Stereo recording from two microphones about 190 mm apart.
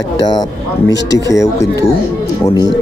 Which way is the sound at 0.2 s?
20° left (ahead or behind).